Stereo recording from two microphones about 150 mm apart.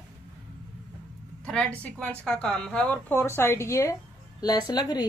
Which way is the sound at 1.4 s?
5° left (ahead or behind).